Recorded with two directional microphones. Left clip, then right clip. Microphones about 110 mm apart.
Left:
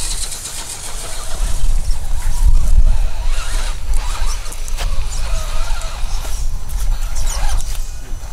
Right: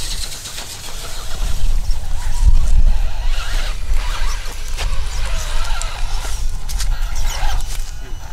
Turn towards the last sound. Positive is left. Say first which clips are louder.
# right 1 dB
turn(degrees=5)  # may be behind; listen again after turning